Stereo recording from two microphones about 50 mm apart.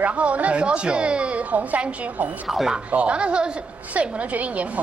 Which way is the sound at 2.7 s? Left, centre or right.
Right.